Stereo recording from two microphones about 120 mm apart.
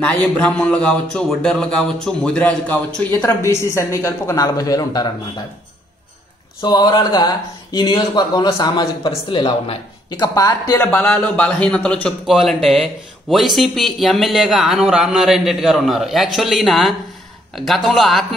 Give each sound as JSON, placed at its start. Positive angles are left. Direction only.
{"t": 0.2, "sound": "speech", "side_deg": 10}
{"t": 3.1, "sound": "speech", "side_deg": 25}
{"t": 6.6, "sound": "a man's voice", "side_deg": 35}
{"t": 10.8, "sound": "speech", "side_deg": 15}